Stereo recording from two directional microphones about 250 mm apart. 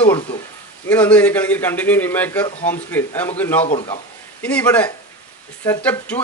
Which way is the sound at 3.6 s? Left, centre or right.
Left.